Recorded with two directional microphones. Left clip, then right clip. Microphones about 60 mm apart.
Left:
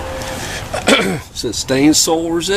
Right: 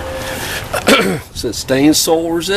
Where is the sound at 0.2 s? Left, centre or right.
Right.